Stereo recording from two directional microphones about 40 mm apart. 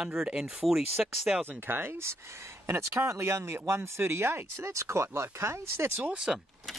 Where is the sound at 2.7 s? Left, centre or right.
Right.